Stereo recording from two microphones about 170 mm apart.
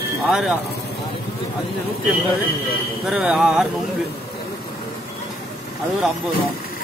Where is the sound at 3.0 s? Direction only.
5° right (ahead or behind).